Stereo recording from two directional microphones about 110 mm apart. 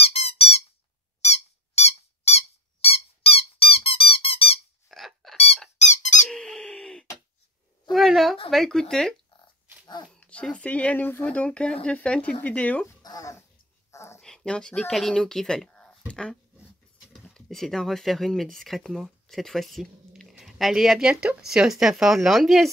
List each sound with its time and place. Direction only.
0.0 s squeak: 65° left (ahead or behind)
1.2 s squeak: 80° left; by 4.6 s 60° left (ahead or behind)
4.8 s squeak: centre (ahead or behind)
5.8 s squeak: 90° left
6.2 s owl: 5° left (ahead or behind)
7.9 s a sound: centre (ahead or behind)
8.5 s speech: 5° left (ahead or behind)
13.0 s a sound: 35° left (ahead or behind)
14.2 s speech: 5° left (ahead or behind)